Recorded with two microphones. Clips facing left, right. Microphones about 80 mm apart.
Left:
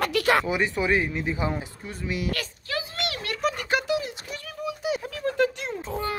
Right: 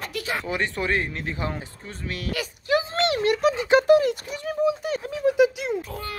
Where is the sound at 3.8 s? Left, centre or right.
Right.